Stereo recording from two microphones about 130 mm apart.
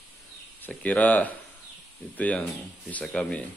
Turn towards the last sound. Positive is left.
turn(degrees=10)  # may be behind; listen again after turning